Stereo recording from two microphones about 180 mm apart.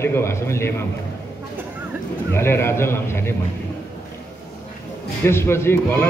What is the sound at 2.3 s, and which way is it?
Speech, 15° left (ahead or behind).